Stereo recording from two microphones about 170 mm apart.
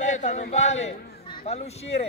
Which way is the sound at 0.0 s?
45° left (ahead or behind).